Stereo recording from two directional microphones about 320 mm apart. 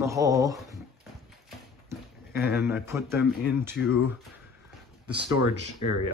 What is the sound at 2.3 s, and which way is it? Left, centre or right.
Speech, centre.